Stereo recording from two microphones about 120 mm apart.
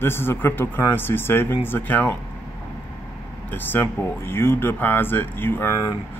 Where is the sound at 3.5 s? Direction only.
20° left (ahead or behind).